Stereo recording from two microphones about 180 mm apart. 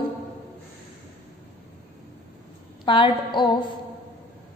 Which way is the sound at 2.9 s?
30° left (ahead or behind).